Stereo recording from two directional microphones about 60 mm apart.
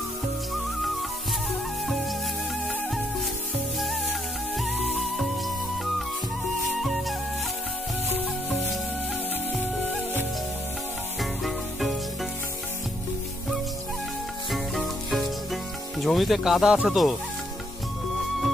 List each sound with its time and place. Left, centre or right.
4.6 s music: centre
6.6 s music: centre
11.4 s music: centre
14.5 s sizzle: centre